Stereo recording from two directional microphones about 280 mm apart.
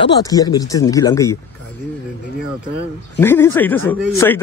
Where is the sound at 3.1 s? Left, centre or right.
Centre.